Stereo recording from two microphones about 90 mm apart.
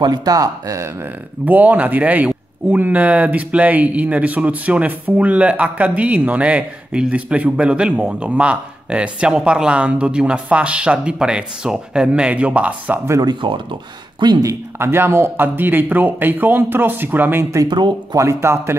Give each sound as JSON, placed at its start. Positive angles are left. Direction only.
{"t": 0.0, "sound": "speech", "side_deg": -45}
{"t": 1.4, "sound": "speech", "side_deg": -20}
{"t": 13.2, "sound": "speech", "side_deg": -60}
{"t": 14.4, "sound": "speech", "side_deg": -40}
{"t": 14.9, "sound": "speech", "side_deg": -25}
{"t": 17.6, "sound": "speech", "side_deg": -55}
{"t": 18.1, "sound": "speech", "side_deg": -35}